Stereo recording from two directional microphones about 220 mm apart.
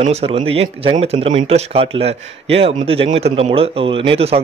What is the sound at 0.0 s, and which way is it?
Speech, 30° right (ahead or behind).